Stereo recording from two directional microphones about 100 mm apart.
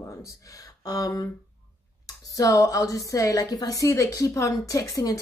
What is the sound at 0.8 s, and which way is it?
Speech, 35° left (ahead or behind).